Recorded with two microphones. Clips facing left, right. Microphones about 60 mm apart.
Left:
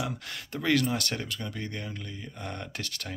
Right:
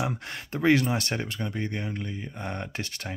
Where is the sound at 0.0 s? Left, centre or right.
Right.